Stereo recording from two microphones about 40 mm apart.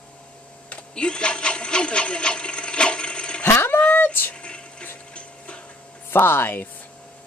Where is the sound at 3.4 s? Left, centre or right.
Left.